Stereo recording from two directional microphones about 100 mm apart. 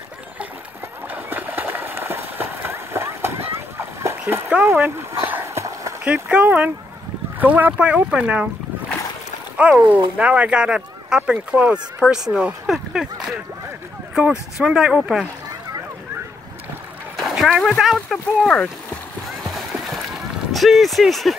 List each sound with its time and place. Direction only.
1.0 s run: 20° right (ahead or behind)
3.5 s splash: 25° right (ahead or behind)
4.3 s speech: 20° right (ahead or behind)
5.4 s run: 30° right (ahead or behind)
6.0 s speech: 15° right (ahead or behind)
9.6 s speech: 15° right (ahead or behind)
12.6 s a sound: 5° right (ahead or behind)
14.6 s speech: 10° right (ahead or behind)
17.2 s speech: centre (ahead or behind)
19.4 s rowboat: centre (ahead or behind)